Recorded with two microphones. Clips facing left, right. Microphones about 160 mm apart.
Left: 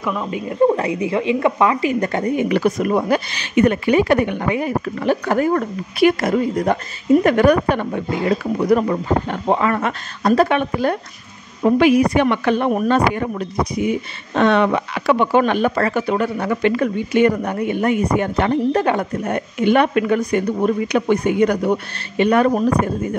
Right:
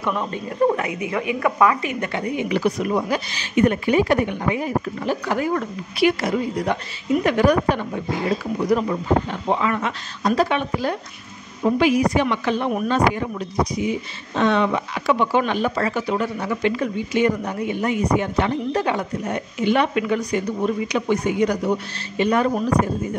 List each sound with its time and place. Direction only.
0.0 s speech: centre (ahead or behind)
0.5 s speech: 30° left (ahead or behind)
1.9 s a woman's voice: 40° left (ahead or behind); by 22.5 s 65° left (ahead or behind)